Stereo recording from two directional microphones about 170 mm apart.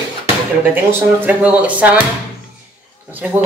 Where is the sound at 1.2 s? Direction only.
10° right (ahead or behind).